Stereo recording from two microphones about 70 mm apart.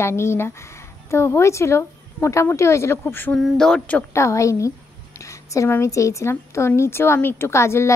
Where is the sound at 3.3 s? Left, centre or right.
Centre.